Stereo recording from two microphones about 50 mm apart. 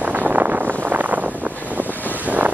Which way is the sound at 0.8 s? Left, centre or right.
Right.